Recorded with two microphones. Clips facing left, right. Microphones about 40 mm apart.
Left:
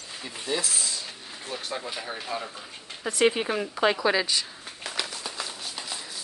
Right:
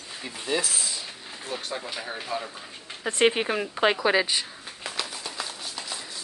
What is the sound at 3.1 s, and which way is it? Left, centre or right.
Speech, right.